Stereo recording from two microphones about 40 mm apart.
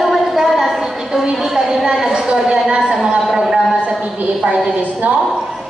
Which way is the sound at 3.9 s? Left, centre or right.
Right.